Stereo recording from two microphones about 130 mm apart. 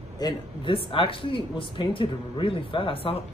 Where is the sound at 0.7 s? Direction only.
45° left (ahead or behind).